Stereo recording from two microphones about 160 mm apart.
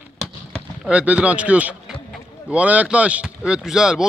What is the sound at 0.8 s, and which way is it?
Speech, 10° right (ahead or behind).